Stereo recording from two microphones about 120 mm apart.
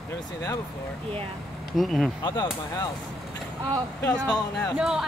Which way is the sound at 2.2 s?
35° left (ahead or behind).